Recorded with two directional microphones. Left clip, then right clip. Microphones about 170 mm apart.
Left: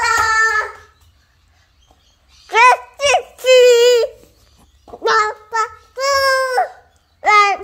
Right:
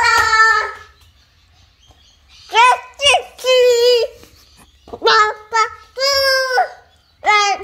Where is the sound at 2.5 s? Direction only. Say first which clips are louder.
Left 1 dB; 35° left (ahead or behind).